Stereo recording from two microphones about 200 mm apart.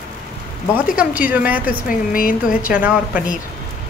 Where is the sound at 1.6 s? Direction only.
45° left (ahead or behind).